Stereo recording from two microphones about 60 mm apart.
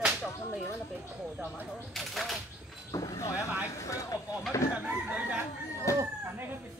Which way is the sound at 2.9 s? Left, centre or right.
Left.